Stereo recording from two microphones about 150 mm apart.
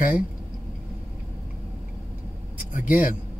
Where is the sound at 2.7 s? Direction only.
65° left (ahead or behind).